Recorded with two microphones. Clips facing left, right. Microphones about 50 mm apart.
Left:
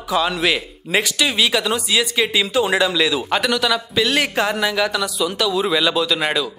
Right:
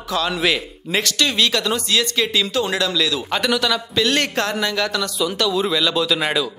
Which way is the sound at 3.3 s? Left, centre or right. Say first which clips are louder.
Left 1 dB; centre.